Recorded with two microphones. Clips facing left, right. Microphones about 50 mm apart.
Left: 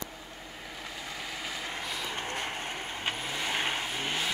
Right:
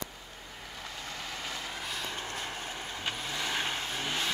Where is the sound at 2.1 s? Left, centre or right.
Left; by 4.3 s centre.